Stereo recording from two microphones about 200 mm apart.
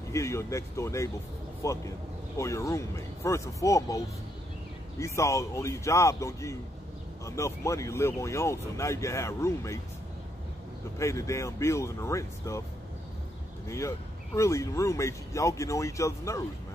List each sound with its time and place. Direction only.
0.1 s speech: 15° left (ahead or behind)
11.0 s speech: 15° left (ahead or behind)
13.7 s speech: 15° left (ahead or behind)